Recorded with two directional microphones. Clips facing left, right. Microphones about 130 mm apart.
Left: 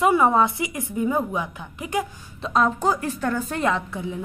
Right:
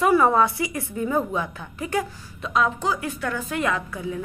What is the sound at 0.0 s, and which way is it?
A woman's voice, 20° left (ahead or behind).